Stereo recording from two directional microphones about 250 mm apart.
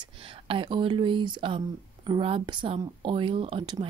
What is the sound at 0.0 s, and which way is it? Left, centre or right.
Speech, right.